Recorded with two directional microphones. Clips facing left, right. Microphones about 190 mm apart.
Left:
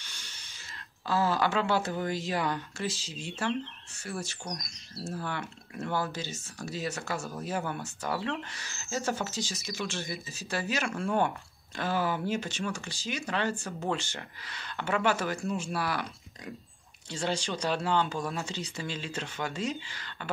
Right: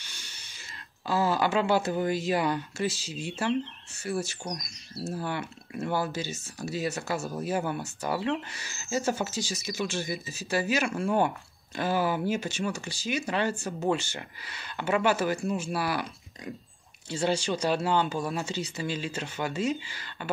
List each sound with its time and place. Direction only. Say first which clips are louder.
0.0 s a sound: right 1 dB; 15° right (ahead or behind)
1.0 s speech: right 2 dB; 15° right (ahead or behind)
4.1 s speech: right 6 dB; 15° right (ahead or behind)
4.5 s speech: right 3 dB; centre (ahead or behind)
5.1 s speech: right 3 dB; 10° right (ahead or behind)
17.2 s speech: right 4 dB; 10° right (ahead or behind)